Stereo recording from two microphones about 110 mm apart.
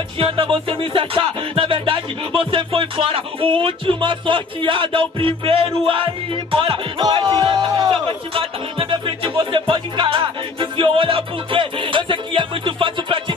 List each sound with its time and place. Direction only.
0.2 s music: 55° right (ahead or behind)
7.0 s speech: 40° right (ahead or behind)
7.9 s speech: 55° right (ahead or behind)